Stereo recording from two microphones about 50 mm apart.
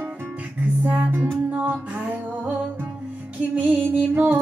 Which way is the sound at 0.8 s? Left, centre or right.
Right.